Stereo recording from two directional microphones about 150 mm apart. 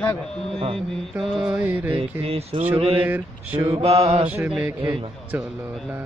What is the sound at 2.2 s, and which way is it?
Music, 40° right (ahead or behind).